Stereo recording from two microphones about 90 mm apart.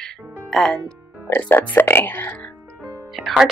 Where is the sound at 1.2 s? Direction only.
20° left (ahead or behind).